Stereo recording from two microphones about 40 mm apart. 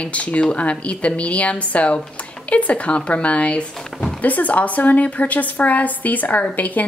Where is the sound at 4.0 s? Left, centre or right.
Left.